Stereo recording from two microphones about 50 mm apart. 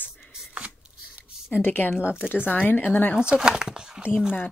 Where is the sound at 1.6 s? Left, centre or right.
Left.